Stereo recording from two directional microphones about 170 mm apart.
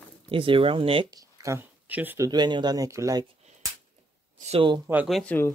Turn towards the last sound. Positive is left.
turn(degrees=10)  # may be behind; listen again after turning